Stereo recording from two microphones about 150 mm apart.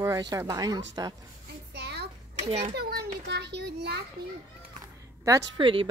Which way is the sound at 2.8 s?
90° right.